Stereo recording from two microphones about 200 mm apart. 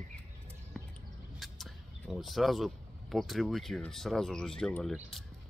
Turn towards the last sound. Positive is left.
turn(degrees=0)  # may be behind; listen again after turning